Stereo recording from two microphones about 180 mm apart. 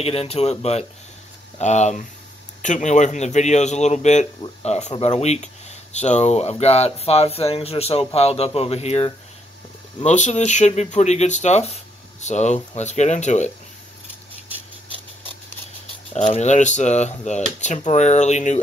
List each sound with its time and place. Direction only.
0.0 s speech: 35° left (ahead or behind)
16.1 s speech: 35° left (ahead or behind)